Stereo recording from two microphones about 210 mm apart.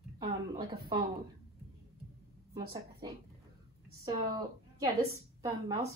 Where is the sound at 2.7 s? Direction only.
20° right (ahead or behind).